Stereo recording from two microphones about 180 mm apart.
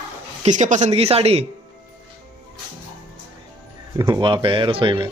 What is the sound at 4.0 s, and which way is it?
Speech, 25° right (ahead or behind).